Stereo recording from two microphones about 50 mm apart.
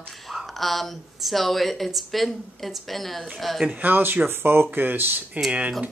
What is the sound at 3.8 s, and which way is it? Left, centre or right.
Speech, right.